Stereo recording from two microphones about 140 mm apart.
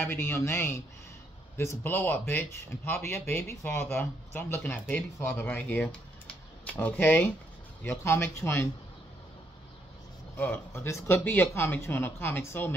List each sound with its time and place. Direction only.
0.0 s speech: 15° left (ahead or behind)
10.3 s speech: 15° left (ahead or behind)